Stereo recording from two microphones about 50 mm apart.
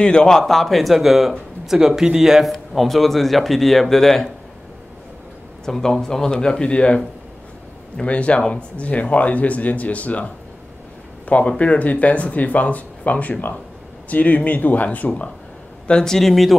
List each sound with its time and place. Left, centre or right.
0.0 s speech: centre
5.7 s speech: centre
8.0 s speech: left
15.9 s speech: centre